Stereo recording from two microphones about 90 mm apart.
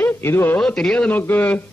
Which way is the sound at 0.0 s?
25° left (ahead or behind).